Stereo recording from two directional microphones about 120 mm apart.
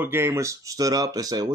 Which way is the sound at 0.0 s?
20° right (ahead or behind).